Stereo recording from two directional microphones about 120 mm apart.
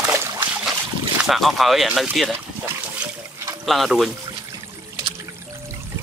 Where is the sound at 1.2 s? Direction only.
Centre (ahead or behind).